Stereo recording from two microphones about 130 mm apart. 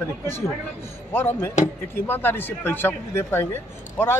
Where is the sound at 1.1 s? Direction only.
20° left (ahead or behind).